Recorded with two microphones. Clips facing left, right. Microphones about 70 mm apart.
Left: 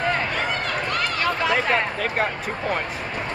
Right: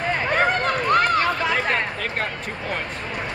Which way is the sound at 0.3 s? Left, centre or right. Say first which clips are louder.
Right 5 dB; right.